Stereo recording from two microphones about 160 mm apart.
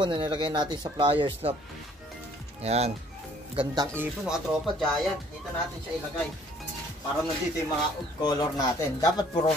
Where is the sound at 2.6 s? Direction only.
40° right (ahead or behind).